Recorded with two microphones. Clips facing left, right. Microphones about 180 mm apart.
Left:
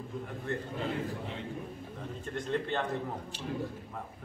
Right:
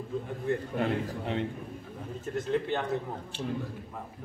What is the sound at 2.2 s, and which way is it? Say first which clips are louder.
Speech: right 4 dB; 5° right (ahead or behind).